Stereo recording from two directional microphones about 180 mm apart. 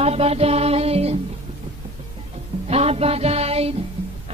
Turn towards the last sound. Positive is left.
turn(degrees=-35)  # may be behind; listen again after turning